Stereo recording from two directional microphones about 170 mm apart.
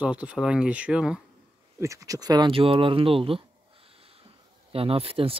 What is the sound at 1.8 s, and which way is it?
Speech, 20° right (ahead or behind).